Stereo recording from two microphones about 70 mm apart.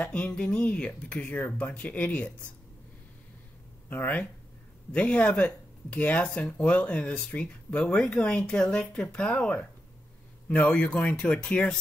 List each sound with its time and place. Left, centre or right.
0.0 s speech: centre
3.9 s speech: left
10.8 s speech: centre